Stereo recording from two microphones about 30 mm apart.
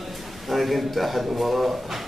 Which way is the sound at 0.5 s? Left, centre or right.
Centre.